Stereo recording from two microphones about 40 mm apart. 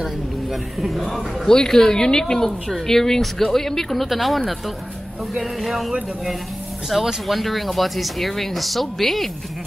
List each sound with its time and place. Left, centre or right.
0.0 s speech: centre
1.5 s speech: centre